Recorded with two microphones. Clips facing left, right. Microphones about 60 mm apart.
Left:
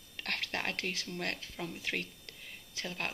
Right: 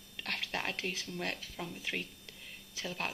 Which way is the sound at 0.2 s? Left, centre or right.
Left.